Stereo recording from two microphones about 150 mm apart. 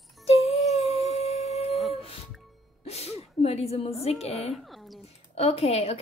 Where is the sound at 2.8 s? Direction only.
45° left (ahead or behind).